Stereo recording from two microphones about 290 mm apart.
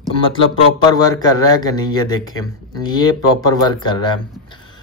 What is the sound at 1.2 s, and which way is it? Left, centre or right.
Speech, centre.